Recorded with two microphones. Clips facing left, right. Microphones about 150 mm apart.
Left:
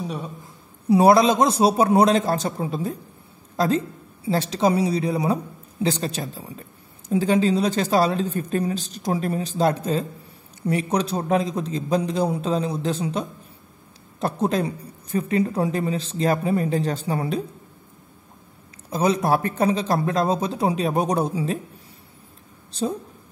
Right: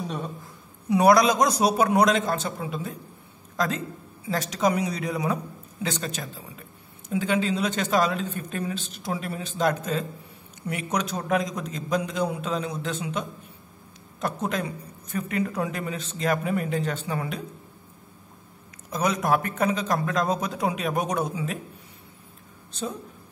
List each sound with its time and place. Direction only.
0.8 s a woman's voice: 30° left (ahead or behind)
18.9 s a woman's voice: 30° left (ahead or behind)
22.7 s a woman's voice: 35° left (ahead or behind)